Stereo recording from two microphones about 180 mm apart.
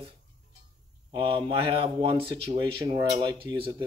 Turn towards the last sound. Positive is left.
turn(degrees=-25)  # may be behind; listen again after turning